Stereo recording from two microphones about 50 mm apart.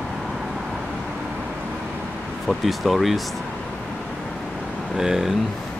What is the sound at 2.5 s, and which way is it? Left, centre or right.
Speech, centre.